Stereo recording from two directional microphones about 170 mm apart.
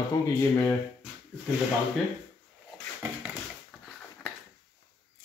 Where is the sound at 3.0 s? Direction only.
10° right (ahead or behind).